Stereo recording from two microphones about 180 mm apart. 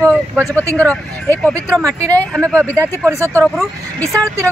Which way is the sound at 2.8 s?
15° right (ahead or behind).